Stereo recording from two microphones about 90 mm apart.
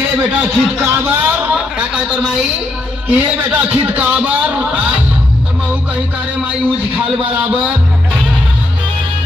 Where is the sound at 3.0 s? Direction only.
20° right (ahead or behind).